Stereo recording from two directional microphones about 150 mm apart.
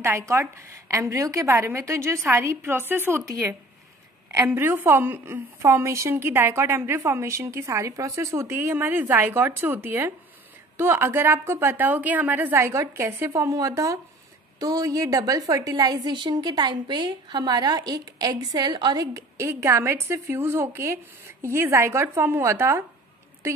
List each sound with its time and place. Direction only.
0.0 s a woman's voice: 20° right (ahead or behind)